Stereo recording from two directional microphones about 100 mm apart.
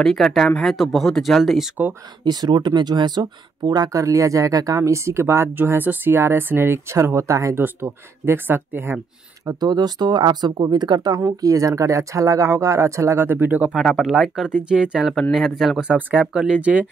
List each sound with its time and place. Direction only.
0.0 s speech: 5° left (ahead or behind)
2.2 s speech: 45° right (ahead or behind); by 8.9 s 20° right (ahead or behind)
9.4 s speech: 40° right (ahead or behind)
11.2 s speech: 35° right (ahead or behind); by 13.7 s 15° right (ahead or behind)
13.7 s speech: centre (ahead or behind)
15.9 s speech: 15° right (ahead or behind)